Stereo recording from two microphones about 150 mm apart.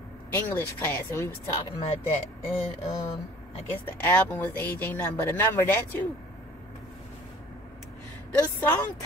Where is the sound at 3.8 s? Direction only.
10° left (ahead or behind).